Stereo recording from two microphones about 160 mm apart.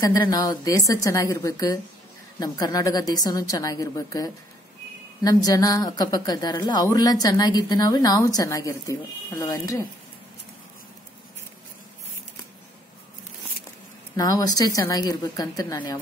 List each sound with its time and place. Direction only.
0.0 s a woman's voice: 25° left (ahead or behind)
14.1 s a woman's voice: 25° left (ahead or behind)